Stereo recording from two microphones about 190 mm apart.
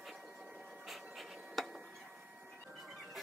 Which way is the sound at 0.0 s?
Centre (ahead or behind).